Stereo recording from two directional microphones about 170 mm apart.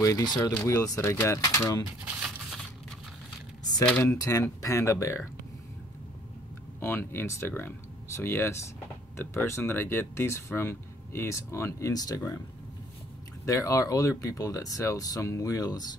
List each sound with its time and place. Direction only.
0.0 s speech: 20° left (ahead or behind)
2.2 s a sound: centre (ahead or behind)
3.8 s speech: 10° left (ahead or behind)
4.2 s speech: 20° left (ahead or behind)
6.8 s speech: 15° left (ahead or behind)
13.5 s speech: 20° left (ahead or behind)